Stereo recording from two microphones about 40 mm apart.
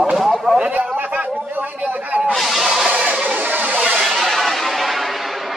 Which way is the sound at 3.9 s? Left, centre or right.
Centre.